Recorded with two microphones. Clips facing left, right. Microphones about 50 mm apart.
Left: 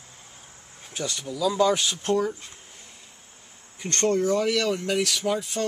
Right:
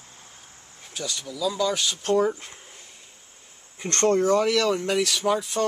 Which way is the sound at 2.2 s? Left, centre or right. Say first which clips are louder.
Right 4 dB; right.